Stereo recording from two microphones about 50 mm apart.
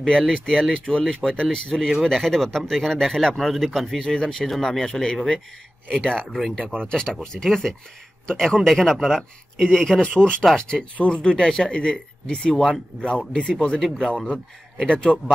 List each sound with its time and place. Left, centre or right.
0.3 s speech: centre
6.3 s speech: centre
6.8 s speech: centre